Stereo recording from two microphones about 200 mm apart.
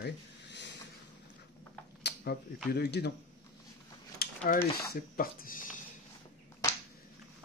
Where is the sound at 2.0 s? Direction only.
55° left (ahead or behind).